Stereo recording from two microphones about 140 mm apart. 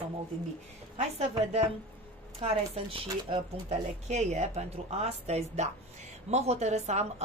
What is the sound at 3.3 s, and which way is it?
Speech, 50° right (ahead or behind).